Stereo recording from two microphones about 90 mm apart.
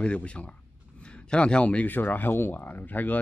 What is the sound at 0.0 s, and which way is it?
Speech, 15° left (ahead or behind).